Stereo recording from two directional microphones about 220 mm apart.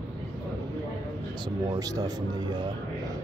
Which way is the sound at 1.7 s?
15° right (ahead or behind).